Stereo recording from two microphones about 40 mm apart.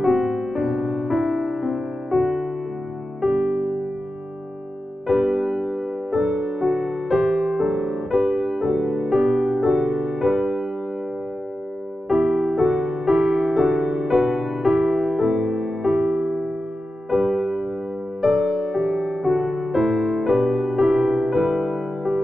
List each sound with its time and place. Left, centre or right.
0.0 s music: centre
5.0 s music: centre
6.2 s music: centre
12.1 s music: centre